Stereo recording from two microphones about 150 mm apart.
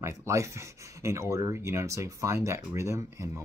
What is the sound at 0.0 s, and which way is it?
Speech, 20° right (ahead or behind).